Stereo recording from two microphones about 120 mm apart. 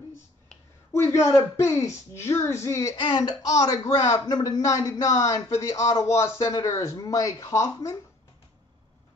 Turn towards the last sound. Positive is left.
turn(degrees=25)  # may be behind; listen again after turning